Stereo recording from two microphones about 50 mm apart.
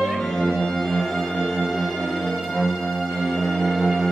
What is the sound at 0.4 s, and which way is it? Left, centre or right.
Music, left.